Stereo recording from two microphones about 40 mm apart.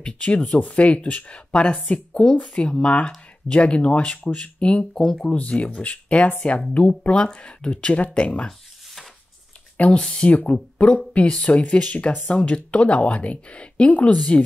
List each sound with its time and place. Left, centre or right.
0.0 s speech: left
5.2 s speech: left
8.5 s a sound: centre
9.8 s speech: left